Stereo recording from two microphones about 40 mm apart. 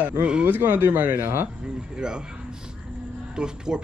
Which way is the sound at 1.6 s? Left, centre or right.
Right.